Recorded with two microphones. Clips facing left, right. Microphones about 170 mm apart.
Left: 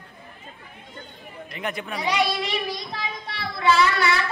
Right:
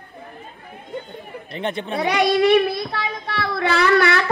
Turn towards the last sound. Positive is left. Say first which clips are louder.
# right 3 dB
turn(degrees=-60)  # may be behind; listen again after turning